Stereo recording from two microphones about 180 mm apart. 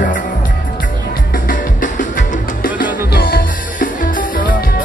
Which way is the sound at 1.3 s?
50° left (ahead or behind).